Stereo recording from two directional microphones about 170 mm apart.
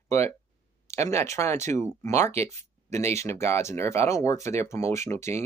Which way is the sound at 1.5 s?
45° right (ahead or behind).